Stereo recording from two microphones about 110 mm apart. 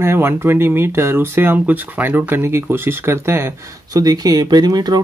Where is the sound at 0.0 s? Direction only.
20° right (ahead or behind).